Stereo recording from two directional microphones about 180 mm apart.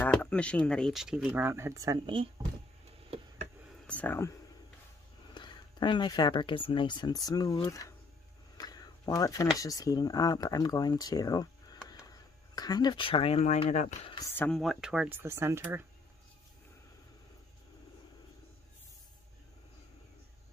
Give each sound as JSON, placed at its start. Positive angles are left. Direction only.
{"t": 0.0, "sound": "speech", "side_deg": 5}
{"t": 3.8, "sound": "speech", "side_deg": 10}
{"t": 5.3, "sound": "speech", "side_deg": 25}
{"t": 8.5, "sound": "a sound", "side_deg": 20}
{"t": 9.6, "sound": "speech", "side_deg": 20}
{"t": 14.0, "sound": "speech", "side_deg": 20}
{"t": 14.3, "sound": "speech", "side_deg": 10}
{"t": 14.6, "sound": "speech", "side_deg": 0}